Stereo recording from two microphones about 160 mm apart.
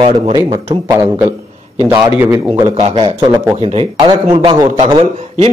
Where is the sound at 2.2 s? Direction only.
20° right (ahead or behind).